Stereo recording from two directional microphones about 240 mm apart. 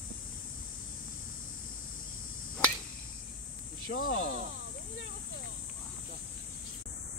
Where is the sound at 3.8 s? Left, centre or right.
Left.